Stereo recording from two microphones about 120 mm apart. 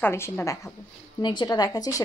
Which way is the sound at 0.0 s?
20° left (ahead or behind).